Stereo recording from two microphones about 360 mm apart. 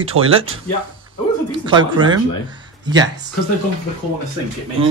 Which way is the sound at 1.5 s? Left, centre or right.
Centre.